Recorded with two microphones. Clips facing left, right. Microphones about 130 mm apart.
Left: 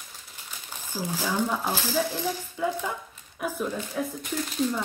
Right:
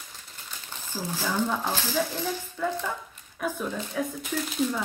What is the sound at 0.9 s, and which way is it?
Speech, 10° left (ahead or behind).